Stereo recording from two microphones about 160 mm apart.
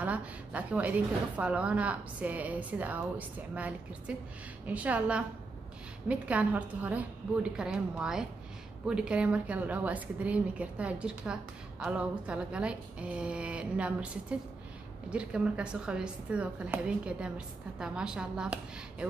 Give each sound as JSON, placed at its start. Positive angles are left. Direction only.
{"t": 0.0, "sound": "a woman's voice", "side_deg": -10}